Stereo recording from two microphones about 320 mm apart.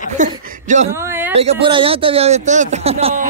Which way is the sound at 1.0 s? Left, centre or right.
Centre.